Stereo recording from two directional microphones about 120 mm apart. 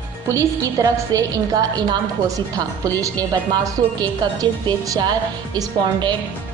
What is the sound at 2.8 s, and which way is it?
A woman's voice, 30° right (ahead or behind).